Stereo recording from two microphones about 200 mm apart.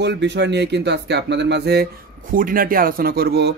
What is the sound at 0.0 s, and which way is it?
A man's voice, 60° right (ahead or behind).